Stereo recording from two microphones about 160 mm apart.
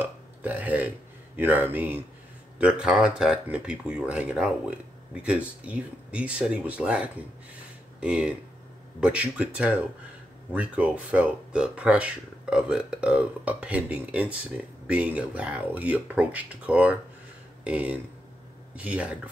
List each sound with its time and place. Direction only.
0.0 s speech: 10° right (ahead or behind)